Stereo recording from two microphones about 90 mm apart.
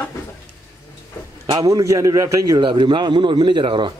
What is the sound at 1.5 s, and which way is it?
A man's voice, 40° right (ahead or behind).